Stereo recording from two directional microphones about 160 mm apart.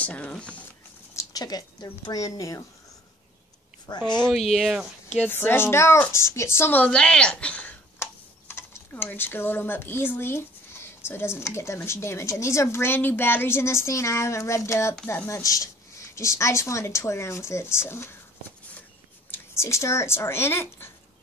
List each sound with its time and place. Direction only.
0.0 s a woman's voice: 10° left (ahead or behind)
1.1 s speech: 25° left (ahead or behind)
3.8 s speech: 25° left (ahead or behind)
4.1 s speech: 5° left (ahead or behind)
5.3 s a woman's voice: 15° left (ahead or behind)
19.3 s speech: 15° left (ahead or behind)